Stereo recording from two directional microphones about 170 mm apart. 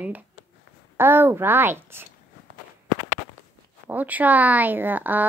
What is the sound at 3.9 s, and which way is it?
Speech, 10° right (ahead or behind).